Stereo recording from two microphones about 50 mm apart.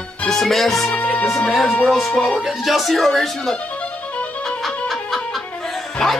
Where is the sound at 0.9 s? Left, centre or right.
Left.